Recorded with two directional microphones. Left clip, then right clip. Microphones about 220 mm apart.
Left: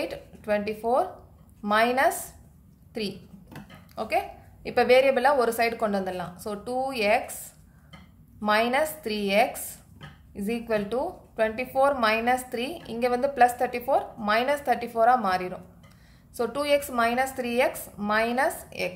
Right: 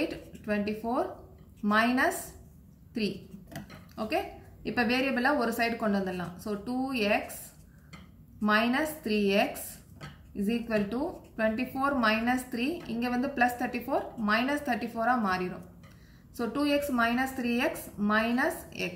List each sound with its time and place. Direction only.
0.1 s a sound: 50° left (ahead or behind)
1.6 s a woman's voice: 50° left (ahead or behind)
3.9 s a woman's voice: 50° left (ahead or behind)
8.5 s a woman's voice: 50° left (ahead or behind)